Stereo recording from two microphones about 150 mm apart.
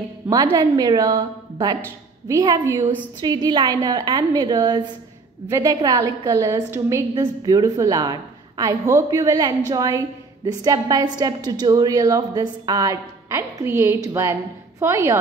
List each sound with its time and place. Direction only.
0.3 s a woman's voice: 25° right (ahead or behind)
3.2 s a woman's voice: 30° right (ahead or behind)